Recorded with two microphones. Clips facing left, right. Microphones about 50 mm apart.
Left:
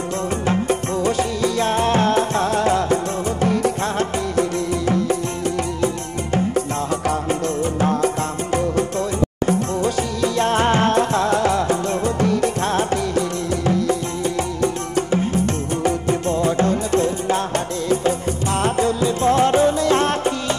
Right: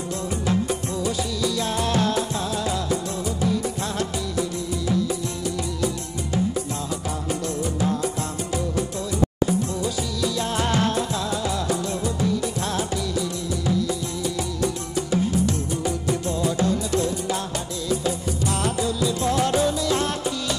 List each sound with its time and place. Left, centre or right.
0.5 s music: left
7.8 s music: left
9.5 s music: left
11.6 s music: left